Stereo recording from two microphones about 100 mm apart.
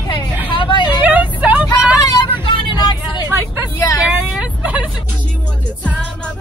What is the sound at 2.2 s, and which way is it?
Vehicle, 50° left (ahead or behind).